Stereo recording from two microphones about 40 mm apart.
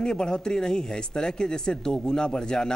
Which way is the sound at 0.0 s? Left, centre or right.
Left.